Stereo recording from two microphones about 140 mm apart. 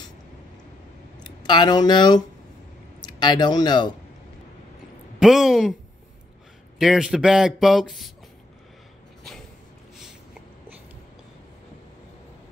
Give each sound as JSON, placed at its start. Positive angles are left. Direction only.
{"t": 1.2, "sound": "speech", "side_deg": 30}
{"t": 5.2, "sound": "speech", "side_deg": 0}
{"t": 6.8, "sound": "speech", "side_deg": -5}